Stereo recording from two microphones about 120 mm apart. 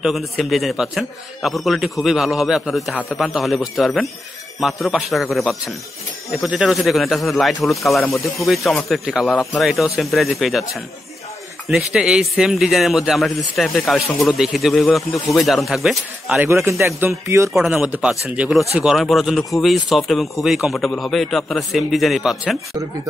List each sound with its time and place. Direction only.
0.0 s speech: centre (ahead or behind)
16.3 s a man's voice: 20° right (ahead or behind)
17.5 s speech: 5° right (ahead or behind)